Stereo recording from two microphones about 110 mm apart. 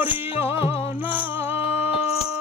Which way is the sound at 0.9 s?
15° right (ahead or behind).